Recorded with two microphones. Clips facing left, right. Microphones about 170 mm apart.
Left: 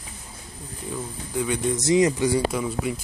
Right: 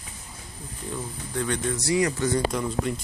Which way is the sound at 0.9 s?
10° left (ahead or behind).